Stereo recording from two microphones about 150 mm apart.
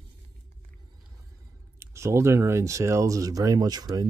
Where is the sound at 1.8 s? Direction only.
15° right (ahead or behind).